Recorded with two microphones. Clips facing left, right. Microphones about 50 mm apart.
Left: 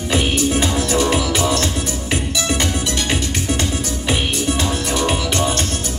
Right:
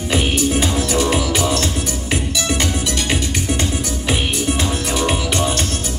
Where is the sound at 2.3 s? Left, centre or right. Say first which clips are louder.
Even; left.